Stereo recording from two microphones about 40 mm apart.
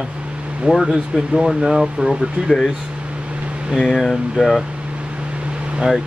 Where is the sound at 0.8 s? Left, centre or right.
Centre.